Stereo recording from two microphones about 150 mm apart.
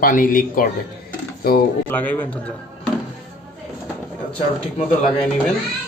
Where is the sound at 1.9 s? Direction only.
10° left (ahead or behind).